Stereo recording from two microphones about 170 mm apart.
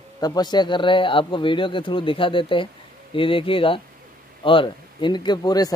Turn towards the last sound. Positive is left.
turn(degrees=25)  # may be behind; listen again after turning